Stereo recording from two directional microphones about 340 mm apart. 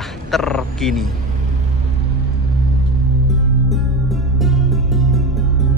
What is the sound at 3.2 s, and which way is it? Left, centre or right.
Music, centre.